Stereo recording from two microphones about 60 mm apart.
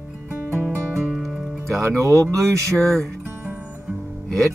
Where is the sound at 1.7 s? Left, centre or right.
Right.